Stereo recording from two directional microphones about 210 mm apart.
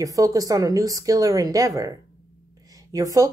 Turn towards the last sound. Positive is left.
turn(degrees=-15)  # may be behind; listen again after turning